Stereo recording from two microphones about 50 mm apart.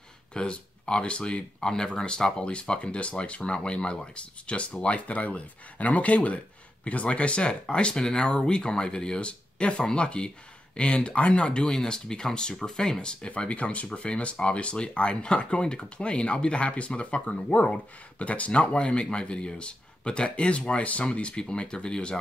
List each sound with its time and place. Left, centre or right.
0.3 s speech: centre